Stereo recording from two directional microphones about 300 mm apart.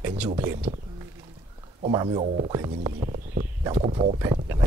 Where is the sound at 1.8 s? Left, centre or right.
Centre.